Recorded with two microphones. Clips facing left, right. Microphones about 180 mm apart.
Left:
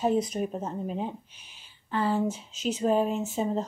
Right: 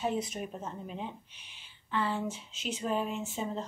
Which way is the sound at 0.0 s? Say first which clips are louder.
Left 7 dB; 40° left (ahead or behind).